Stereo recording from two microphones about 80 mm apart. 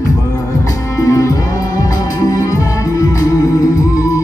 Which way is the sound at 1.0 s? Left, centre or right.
Left.